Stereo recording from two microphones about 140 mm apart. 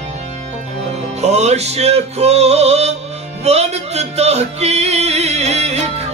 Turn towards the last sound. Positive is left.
turn(degrees=-50)  # may be behind; listen again after turning